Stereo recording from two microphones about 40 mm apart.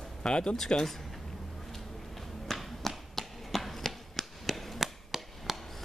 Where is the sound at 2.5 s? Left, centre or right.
Centre.